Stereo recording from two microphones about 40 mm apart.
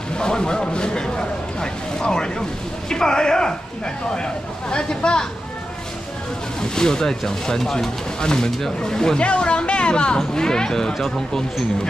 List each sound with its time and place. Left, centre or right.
0.1 s a man's voice: left
6.7 s speech: centre
9.2 s speech: left; by 11.4 s centre